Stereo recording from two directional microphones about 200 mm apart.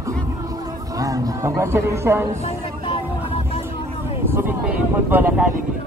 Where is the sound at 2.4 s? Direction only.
30° left (ahead or behind).